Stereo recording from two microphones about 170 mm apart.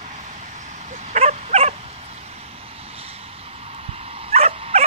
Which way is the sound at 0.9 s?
45° right (ahead or behind).